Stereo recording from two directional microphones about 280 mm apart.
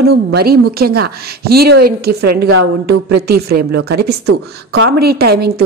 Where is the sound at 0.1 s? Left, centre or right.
Right.